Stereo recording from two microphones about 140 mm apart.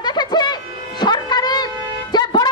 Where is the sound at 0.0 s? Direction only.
30° left (ahead or behind).